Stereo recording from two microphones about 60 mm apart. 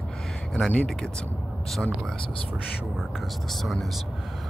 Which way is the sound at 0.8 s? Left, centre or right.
Centre.